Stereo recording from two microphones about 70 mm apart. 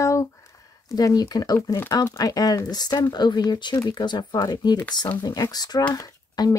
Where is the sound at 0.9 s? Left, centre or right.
Left.